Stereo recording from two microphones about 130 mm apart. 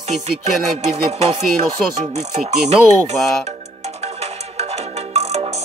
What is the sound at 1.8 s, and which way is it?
Speech, centre (ahead or behind).